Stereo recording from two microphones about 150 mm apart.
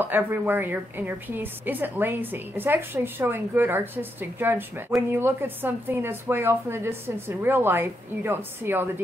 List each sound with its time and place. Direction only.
0.0 s a woman's voice: 15° right (ahead or behind)